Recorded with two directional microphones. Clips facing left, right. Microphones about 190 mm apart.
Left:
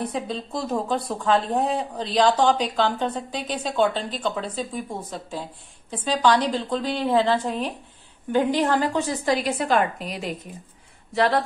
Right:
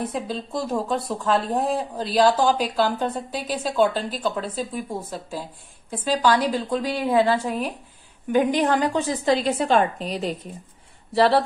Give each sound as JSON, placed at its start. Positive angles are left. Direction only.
{"t": 0.0, "sound": "a woman's voice", "side_deg": 0}